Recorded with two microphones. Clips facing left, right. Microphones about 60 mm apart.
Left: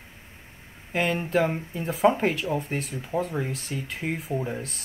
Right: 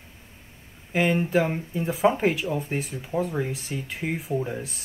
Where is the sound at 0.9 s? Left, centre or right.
Centre.